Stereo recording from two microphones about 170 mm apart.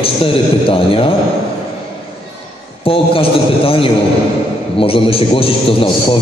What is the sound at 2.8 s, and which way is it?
A man's voice, 35° left (ahead or behind).